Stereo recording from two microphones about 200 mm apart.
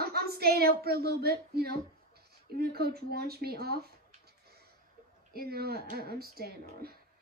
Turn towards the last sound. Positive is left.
turn(degrees=-50)  # may be behind; listen again after turning